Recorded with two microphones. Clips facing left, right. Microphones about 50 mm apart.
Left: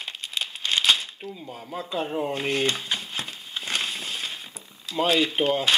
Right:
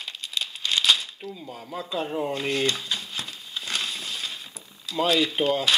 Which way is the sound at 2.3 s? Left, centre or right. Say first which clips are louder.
Even; centre.